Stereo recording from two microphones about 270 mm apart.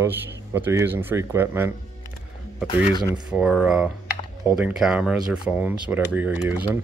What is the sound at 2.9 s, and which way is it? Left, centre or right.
Speech, centre.